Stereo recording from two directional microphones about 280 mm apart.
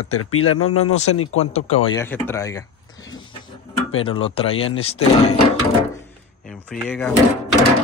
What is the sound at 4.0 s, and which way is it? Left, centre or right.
Speech, centre.